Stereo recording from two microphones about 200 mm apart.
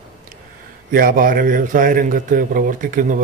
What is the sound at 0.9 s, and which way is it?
A man's voice, 45° right (ahead or behind).